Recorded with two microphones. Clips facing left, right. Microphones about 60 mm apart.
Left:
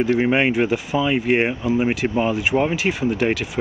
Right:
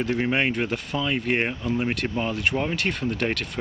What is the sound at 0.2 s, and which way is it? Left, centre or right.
Speech, centre.